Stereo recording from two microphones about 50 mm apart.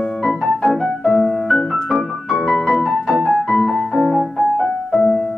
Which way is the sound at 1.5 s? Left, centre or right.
Centre.